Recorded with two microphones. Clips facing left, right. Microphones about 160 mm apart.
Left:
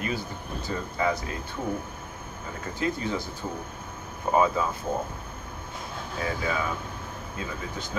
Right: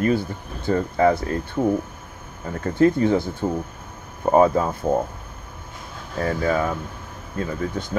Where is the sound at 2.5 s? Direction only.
50° right (ahead or behind).